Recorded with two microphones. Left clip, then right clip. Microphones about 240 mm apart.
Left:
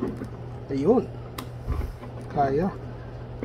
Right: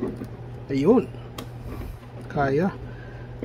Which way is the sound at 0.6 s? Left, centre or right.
Right.